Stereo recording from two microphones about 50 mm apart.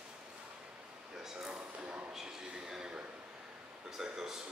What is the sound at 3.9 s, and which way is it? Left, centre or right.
Speech, centre.